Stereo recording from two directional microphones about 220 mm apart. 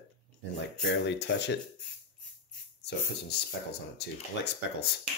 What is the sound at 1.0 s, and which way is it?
Speech, 50° left (ahead or behind).